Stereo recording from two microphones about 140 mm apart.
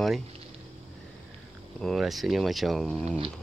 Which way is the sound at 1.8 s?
Centre (ahead or behind).